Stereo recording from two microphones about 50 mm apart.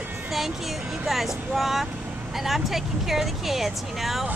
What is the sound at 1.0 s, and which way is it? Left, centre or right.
Speech, centre.